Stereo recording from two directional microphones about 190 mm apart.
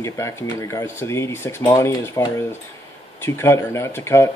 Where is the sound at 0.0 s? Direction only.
15° left (ahead or behind).